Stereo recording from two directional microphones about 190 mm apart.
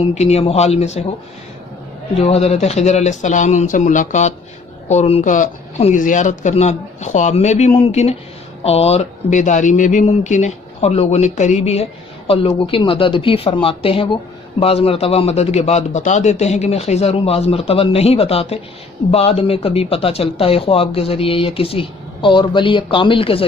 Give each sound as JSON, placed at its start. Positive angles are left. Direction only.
{"t": 0.1, "sound": "speech", "side_deg": 35}
{"t": 2.1, "sound": "speech", "side_deg": 35}